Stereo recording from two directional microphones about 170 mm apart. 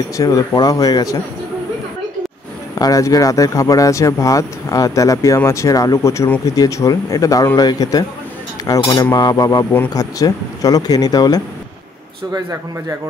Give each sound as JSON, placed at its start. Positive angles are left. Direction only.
{"t": 0.2, "sound": "speech", "side_deg": 20}
{"t": 2.7, "sound": "speech", "side_deg": 20}